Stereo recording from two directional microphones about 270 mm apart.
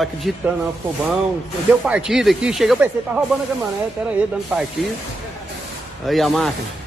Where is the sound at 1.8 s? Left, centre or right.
Centre.